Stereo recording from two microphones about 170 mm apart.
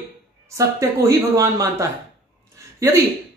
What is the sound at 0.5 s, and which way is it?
Speech, 20° right (ahead or behind).